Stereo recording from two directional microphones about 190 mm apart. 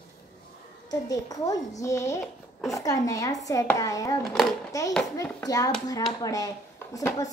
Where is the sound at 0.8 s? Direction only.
20° left (ahead or behind).